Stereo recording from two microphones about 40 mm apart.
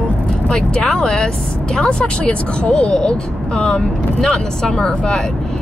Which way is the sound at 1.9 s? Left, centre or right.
Left.